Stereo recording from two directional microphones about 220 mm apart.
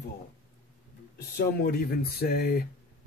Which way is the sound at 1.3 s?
40° left (ahead or behind).